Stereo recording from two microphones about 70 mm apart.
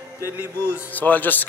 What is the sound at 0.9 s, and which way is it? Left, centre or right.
Speech, left.